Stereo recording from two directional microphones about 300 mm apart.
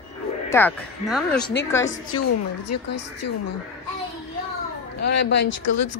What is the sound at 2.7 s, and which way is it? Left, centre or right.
Speech, left.